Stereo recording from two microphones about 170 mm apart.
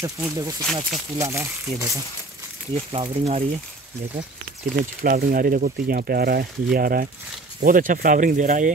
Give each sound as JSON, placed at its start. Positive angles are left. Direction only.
{"t": 0.0, "sound": "speech", "side_deg": -20}
{"t": 2.7, "sound": "speech", "side_deg": -35}
{"t": 4.7, "sound": "speech", "side_deg": -55}